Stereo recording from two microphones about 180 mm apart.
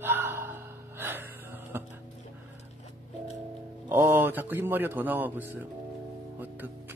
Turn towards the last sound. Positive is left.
turn(degrees=-10)  # may be behind; listen again after turning